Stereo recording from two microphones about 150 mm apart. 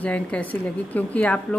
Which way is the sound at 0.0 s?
10° left (ahead or behind).